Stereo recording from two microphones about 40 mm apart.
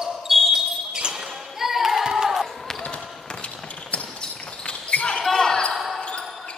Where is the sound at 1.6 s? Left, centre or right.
Centre.